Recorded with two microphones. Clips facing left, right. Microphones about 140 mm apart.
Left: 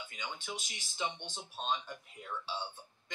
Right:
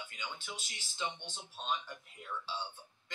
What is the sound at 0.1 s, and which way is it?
Speech, 15° left (ahead or behind).